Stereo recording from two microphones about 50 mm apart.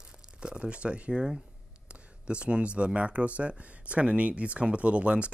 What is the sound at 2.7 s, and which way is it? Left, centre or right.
Speech, right.